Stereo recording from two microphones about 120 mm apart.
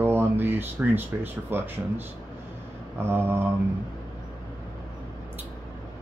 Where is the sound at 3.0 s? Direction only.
20° right (ahead or behind).